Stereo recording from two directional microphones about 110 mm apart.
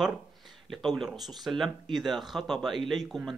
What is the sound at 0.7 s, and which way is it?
Speech, centre (ahead or behind).